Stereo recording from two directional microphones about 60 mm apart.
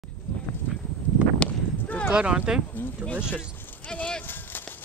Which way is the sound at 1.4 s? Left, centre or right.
Left.